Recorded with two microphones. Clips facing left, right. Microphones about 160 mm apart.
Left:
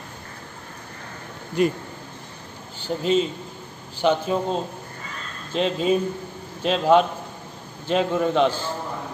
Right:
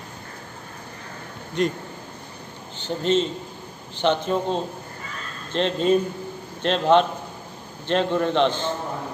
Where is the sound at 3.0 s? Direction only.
5° left (ahead or behind).